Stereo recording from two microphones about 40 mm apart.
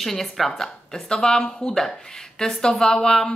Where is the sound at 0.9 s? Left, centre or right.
Centre.